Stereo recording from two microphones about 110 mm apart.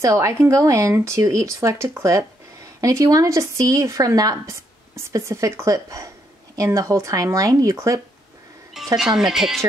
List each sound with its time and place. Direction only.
0.0 s speech: 25° right (ahead or behind)
8.7 s speech: centre (ahead or behind)